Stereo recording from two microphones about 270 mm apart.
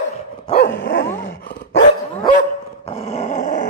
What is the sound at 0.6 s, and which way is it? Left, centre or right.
Dog, left.